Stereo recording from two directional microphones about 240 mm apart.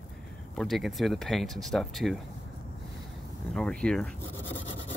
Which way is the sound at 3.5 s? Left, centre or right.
Centre.